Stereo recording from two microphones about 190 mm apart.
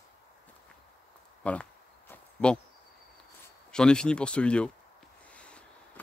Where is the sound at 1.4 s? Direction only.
5° left (ahead or behind).